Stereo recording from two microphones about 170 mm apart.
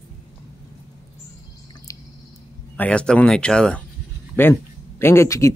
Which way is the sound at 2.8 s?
5° left (ahead or behind).